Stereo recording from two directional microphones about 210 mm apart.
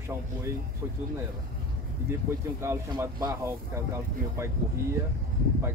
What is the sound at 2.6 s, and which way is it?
Speech, 15° right (ahead or behind).